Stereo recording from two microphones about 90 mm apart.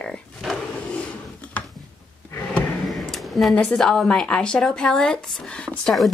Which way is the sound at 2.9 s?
Centre (ahead or behind).